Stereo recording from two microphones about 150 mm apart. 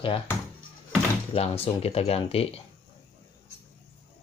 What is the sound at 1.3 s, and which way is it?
Speech, 40° left (ahead or behind).